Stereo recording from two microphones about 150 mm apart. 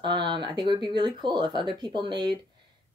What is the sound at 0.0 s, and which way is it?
A woman's voice, 30° right (ahead or behind).